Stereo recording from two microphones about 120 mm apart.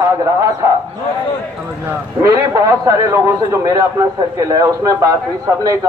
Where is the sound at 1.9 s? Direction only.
25° right (ahead or behind).